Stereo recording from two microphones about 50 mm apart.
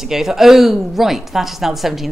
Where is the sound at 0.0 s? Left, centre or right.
Centre.